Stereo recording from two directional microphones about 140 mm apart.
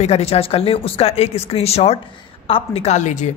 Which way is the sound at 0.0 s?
45° left (ahead or behind).